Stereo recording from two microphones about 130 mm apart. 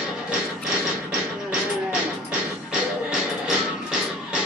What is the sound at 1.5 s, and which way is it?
Music, 10° right (ahead or behind).